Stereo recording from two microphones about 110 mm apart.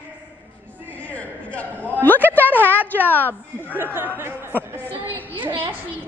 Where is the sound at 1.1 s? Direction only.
15° left (ahead or behind).